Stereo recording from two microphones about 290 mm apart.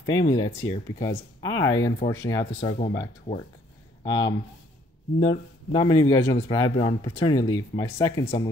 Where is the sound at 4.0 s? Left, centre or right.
Centre.